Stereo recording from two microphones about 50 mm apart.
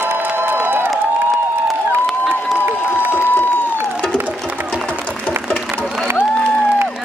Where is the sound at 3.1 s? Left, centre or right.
Left.